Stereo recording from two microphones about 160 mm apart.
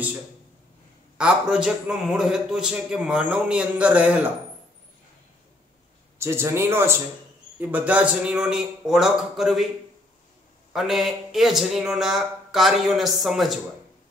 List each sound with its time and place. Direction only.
1.1 s a man's voice: 5° right (ahead or behind)
6.1 s a man's voice: 15° right (ahead or behind)
10.7 s a man's voice: centre (ahead or behind)